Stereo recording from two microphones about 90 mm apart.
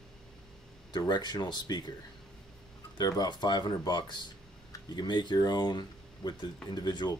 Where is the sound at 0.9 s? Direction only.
50° left (ahead or behind).